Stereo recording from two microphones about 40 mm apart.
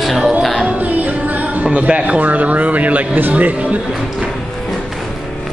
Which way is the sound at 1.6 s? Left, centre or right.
Right.